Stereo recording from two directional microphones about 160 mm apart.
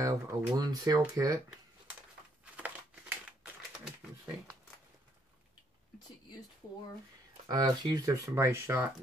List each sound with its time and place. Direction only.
0.0 s speech: 20° right (ahead or behind)
2.5 s crumpling: 10° right (ahead or behind)
7.4 s speech: 25° right (ahead or behind)